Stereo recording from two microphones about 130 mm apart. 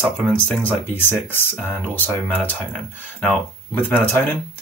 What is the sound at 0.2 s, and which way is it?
Speech, 5° left (ahead or behind).